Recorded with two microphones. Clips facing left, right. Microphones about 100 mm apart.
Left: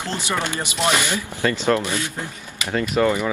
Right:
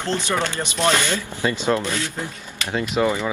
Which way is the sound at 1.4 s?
15° right (ahead or behind).